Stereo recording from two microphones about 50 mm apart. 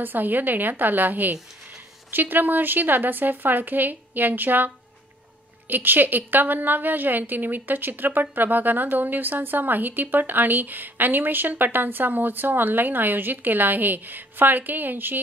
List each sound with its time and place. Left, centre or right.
0.0 s a woman's voice: right